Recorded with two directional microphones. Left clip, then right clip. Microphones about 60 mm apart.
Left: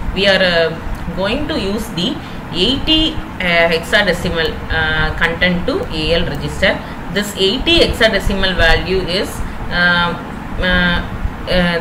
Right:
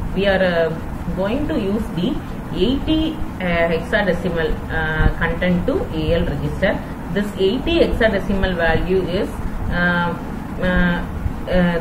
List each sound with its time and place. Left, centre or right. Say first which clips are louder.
0.2 s a woman's voice: left 5 dB; centre